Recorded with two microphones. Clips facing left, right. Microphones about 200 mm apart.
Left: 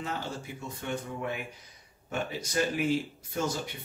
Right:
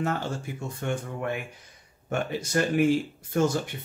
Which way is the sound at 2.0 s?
55° right (ahead or behind).